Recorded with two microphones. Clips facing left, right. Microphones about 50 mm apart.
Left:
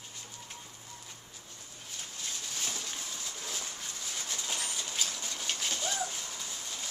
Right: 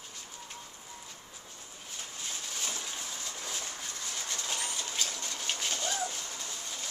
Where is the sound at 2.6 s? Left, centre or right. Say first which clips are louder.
Right 1 dB; centre.